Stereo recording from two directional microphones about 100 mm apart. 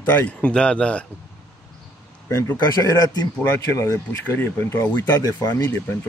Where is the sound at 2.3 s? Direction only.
30° left (ahead or behind).